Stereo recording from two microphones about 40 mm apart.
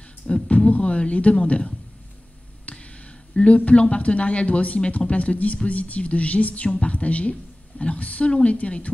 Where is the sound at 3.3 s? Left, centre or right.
Left.